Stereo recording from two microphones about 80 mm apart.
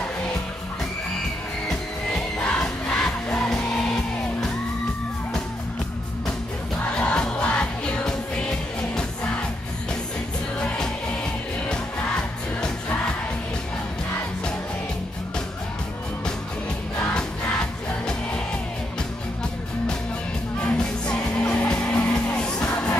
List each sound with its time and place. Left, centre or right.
2.0 s music: centre
7.0 s music: centre
20.6 s music: centre